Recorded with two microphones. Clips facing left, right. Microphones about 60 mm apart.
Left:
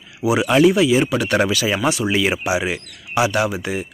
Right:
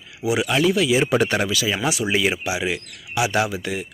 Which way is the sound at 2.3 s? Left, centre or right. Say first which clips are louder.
Left 4 dB; centre.